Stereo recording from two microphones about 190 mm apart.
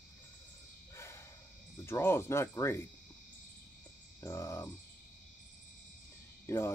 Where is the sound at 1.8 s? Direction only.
15° left (ahead or behind).